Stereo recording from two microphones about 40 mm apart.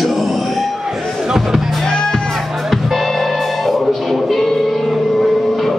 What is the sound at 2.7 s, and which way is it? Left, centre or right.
Music, centre.